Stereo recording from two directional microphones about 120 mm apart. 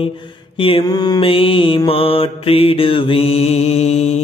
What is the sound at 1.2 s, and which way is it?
Mantra, 50° left (ahead or behind).